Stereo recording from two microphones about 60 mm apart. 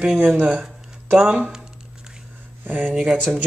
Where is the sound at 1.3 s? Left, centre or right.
Centre.